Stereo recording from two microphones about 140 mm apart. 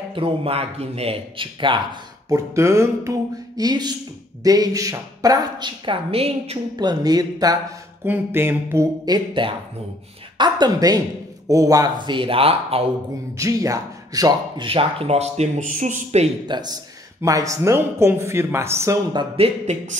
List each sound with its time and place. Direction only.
0.1 s a man's voice: 40° right (ahead or behind)
2.2 s a woman's voice: 20° right (ahead or behind); by 6.6 s 45° right (ahead or behind)
6.8 s a woman's voice: 30° right (ahead or behind)
8.0 s a sound: 15° right (ahead or behind)
9.0 s a man's voice: 35° right (ahead or behind)
13.4 s a woman's voice: 25° right (ahead or behind)
14.7 s speech: 40° right (ahead or behind)
16.4 s a man's voice: 30° right (ahead or behind)
19.1 s speech: 45° right (ahead or behind)